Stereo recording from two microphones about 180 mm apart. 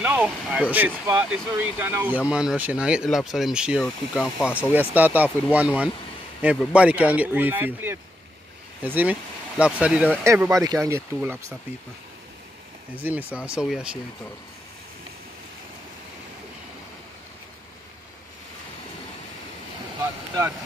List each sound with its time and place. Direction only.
0.0 s speech: 10° right (ahead or behind)
13.3 s speech: 5° right (ahead or behind)
20.0 s speech: 15° right (ahead or behind)